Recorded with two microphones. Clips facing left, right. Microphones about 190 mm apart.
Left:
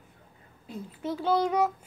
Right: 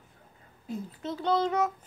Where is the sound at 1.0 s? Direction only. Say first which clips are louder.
Left 2 dB; 10° left (ahead or behind).